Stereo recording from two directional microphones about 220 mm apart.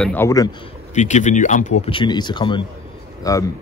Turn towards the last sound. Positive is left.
turn(degrees=15)  # may be behind; listen again after turning